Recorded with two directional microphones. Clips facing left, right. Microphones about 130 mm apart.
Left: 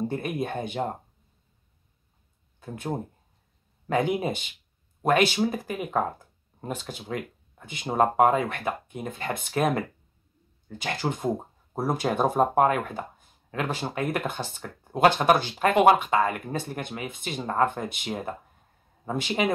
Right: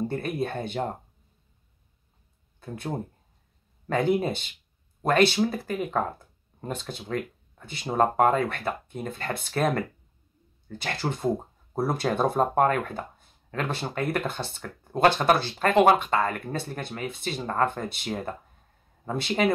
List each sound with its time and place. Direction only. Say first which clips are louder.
0.1 s speech: even; 15° left (ahead or behind)
2.6 s speech: left 1 dB; 15° left (ahead or behind)